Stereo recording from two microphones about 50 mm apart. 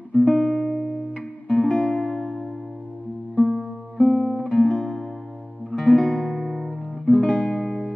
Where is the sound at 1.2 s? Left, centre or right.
Centre.